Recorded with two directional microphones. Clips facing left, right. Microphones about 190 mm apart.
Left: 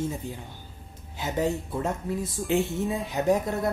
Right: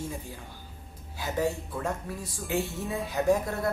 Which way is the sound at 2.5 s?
Centre (ahead or behind).